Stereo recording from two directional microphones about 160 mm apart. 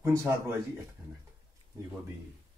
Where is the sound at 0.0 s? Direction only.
20° right (ahead or behind).